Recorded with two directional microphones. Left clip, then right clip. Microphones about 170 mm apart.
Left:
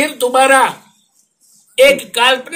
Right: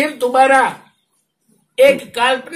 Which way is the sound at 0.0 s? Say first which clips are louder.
Left 1 dB; 10° left (ahead or behind).